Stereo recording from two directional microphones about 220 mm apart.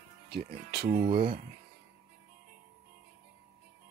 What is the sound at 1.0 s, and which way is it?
Speech, 25° right (ahead or behind).